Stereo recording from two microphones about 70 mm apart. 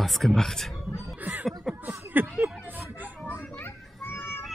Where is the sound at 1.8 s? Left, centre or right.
Right.